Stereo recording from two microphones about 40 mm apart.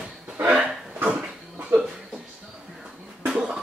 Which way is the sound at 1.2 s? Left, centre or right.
Right.